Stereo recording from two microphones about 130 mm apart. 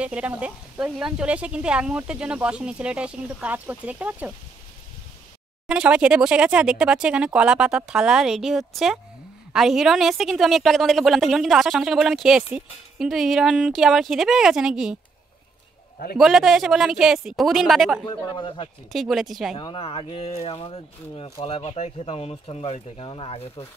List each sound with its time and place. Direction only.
0.0 s speech: 10° right (ahead or behind)
5.7 s a woman's voice: 5° right (ahead or behind)
16.2 s a woman's voice: centre (ahead or behind)
18.0 s speech: 40° left (ahead or behind)
18.9 s a woman's voice: centre (ahead or behind)
19.5 s speech: 40° left (ahead or behind)